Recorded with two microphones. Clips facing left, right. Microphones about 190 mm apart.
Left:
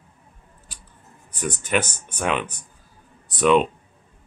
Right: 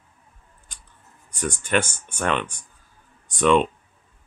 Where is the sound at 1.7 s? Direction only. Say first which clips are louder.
Right 1 dB; 5° left (ahead or behind).